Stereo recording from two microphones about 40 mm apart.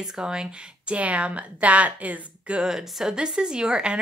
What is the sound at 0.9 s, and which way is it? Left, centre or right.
Speech, right.